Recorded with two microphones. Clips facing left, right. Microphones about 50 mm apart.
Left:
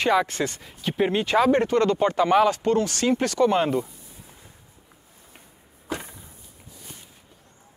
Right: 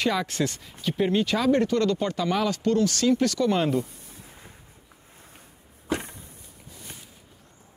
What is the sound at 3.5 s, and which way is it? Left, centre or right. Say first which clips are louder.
Speech: left 2 dB; centre.